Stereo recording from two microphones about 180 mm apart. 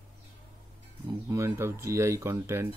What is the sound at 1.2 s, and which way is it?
Speech, 15° right (ahead or behind).